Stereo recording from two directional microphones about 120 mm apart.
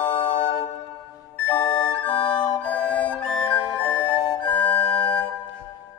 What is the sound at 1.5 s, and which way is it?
Flute, 35° left (ahead or behind).